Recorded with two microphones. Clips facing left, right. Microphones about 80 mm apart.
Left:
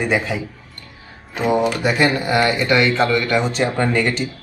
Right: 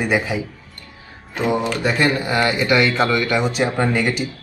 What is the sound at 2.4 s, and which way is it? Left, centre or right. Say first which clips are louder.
Speech: even; centre.